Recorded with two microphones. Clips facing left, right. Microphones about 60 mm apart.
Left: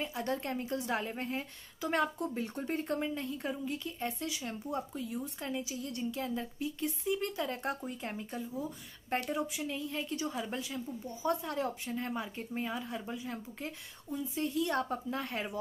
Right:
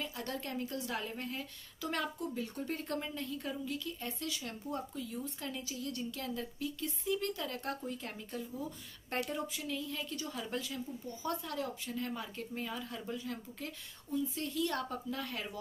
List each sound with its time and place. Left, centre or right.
0.0 s speech: left
4.3 s speech: centre